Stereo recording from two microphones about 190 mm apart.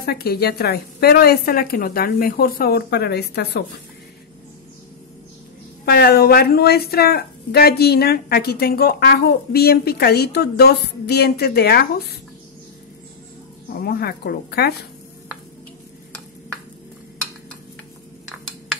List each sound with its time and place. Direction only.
0.0 s a woman's voice: 55° left (ahead or behind)
5.9 s a woman's voice: 60° left (ahead or behind)
13.7 s a woman's voice: 55° left (ahead or behind)